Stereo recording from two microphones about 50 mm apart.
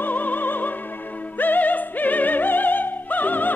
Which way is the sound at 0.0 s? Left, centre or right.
Left.